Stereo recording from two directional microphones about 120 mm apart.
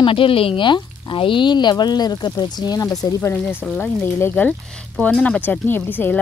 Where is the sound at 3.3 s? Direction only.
15° left (ahead or behind).